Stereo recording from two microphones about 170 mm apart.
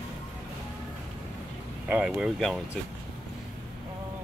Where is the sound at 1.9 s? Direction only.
5° right (ahead or behind).